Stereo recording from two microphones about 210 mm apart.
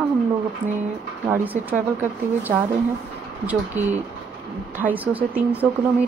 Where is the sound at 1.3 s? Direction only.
10° right (ahead or behind).